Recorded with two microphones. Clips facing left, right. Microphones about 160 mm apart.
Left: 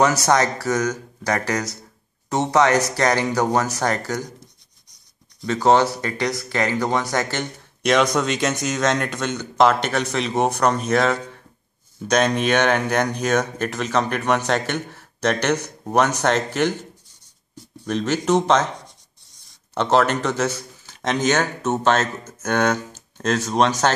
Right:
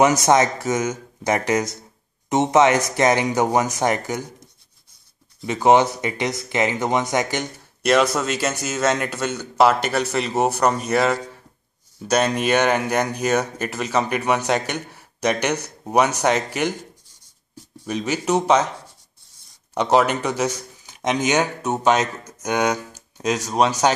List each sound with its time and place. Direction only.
0.0 s speech: 20° right (ahead or behind)
5.5 s speech: 15° right (ahead or behind)
17.8 s speech: 10° right (ahead or behind)
19.7 s speech: 10° right (ahead or behind)